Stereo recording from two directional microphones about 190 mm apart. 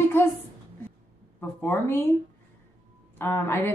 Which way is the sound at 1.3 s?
10° left (ahead or behind).